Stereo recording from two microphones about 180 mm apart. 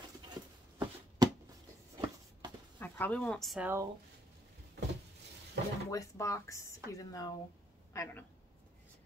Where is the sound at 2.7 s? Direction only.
10° left (ahead or behind).